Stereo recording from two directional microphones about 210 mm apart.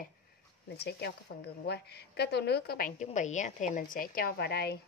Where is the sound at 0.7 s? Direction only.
50° left (ahead or behind).